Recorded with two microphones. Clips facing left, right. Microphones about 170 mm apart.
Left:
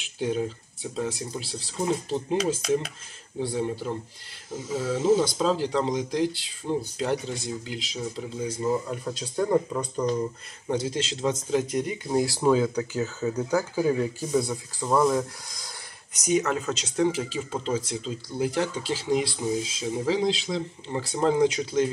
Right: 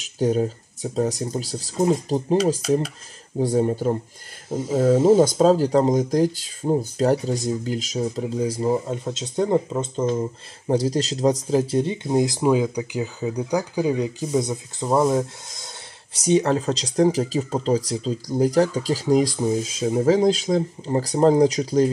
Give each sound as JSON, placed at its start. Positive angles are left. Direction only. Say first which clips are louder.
{"t": 0.0, "sound": "speech", "louder": "right 6 dB", "side_deg": -40}
{"t": 3.3, "sound": "speech", "louder": "right 8 dB", "side_deg": -45}